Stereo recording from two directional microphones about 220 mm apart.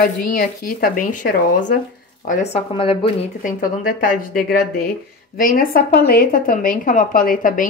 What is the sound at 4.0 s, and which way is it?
Speech, 40° left (ahead or behind).